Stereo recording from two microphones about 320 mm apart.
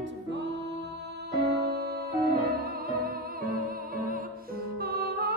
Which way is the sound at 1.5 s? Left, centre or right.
Right.